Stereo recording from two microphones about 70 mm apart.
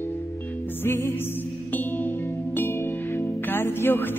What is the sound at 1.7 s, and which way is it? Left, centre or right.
Music, left.